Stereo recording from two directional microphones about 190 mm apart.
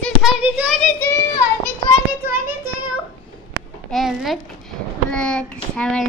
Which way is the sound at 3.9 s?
Centre (ahead or behind).